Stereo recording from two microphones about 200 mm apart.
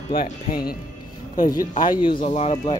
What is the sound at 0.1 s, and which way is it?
Speech, 45° left (ahead or behind).